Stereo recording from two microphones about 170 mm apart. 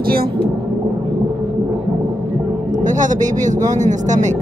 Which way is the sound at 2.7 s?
50° right (ahead or behind).